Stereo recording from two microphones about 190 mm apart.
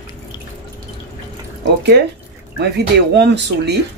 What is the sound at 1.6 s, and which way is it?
Speech, 65° right (ahead or behind).